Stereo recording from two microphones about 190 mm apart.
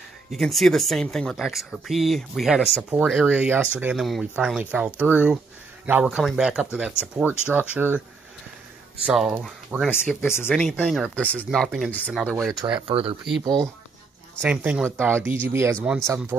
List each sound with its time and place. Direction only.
0.3 s speech: centre (ahead or behind)
9.0 s speech: 5° right (ahead or behind)
12.7 s speech: 30° right (ahead or behind)
14.4 s speech: 10° right (ahead or behind)